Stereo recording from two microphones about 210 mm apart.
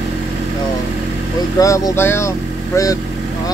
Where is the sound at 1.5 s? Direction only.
15° left (ahead or behind).